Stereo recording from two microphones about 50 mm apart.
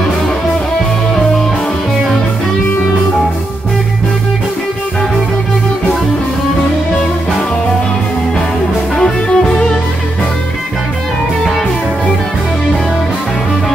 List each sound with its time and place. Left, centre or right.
8.9 s music: centre